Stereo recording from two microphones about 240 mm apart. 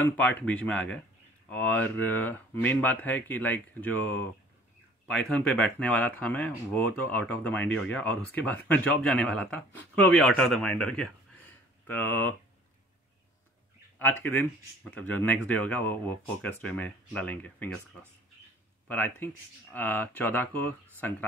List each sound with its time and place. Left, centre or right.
0.0 s speech: centre
13.9 s speech: centre
18.9 s speech: centre